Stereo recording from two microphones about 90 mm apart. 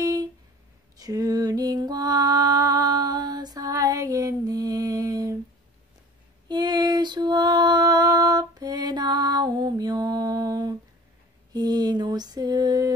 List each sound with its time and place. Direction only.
0.0 s a sound: 40° right (ahead or behind)
0.9 s mantra: 40° right (ahead or behind)
6.5 s female singing: 50° right (ahead or behind)
11.5 s mantra: 50° right (ahead or behind)